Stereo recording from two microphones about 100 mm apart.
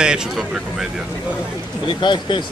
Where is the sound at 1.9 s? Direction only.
50° left (ahead or behind).